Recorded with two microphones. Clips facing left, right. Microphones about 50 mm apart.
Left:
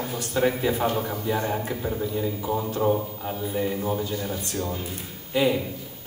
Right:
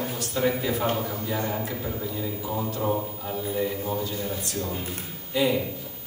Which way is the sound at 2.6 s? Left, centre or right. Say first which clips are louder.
Left 2 dB; centre.